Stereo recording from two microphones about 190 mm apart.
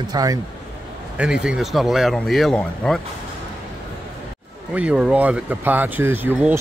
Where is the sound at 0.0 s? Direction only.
20° right (ahead or behind).